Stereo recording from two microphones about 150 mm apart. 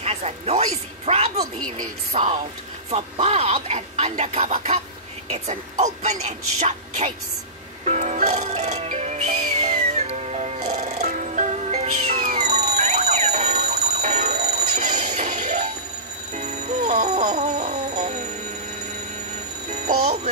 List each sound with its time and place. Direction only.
0.0 s speech: 45° right (ahead or behind)
7.8 s music: 50° right (ahead or behind)
17.0 s clock: 50° right (ahead or behind)